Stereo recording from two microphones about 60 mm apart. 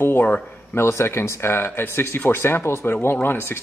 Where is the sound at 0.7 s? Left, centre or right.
Left.